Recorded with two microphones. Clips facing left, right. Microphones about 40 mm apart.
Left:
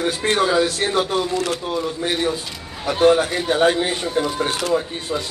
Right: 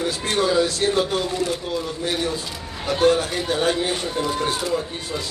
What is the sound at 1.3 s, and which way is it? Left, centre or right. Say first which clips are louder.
Speech: left 2 dB; left.